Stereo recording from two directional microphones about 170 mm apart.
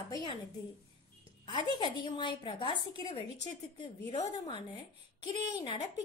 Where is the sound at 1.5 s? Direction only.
30° left (ahead or behind).